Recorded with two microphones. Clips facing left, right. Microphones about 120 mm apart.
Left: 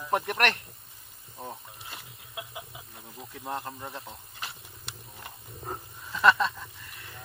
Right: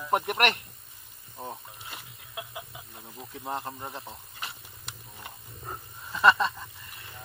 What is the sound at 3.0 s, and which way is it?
Speech, 15° right (ahead or behind).